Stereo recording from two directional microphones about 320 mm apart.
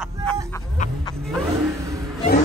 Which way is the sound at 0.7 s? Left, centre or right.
Left.